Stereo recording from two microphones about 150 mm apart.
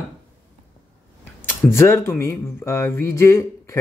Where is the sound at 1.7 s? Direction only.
20° left (ahead or behind).